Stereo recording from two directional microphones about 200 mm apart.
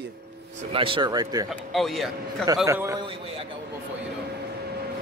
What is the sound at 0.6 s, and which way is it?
Speech, 25° right (ahead or behind).